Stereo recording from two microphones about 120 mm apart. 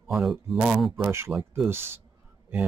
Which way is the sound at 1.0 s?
20° right (ahead or behind).